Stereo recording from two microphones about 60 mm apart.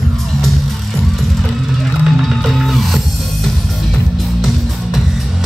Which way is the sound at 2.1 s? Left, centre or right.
Centre.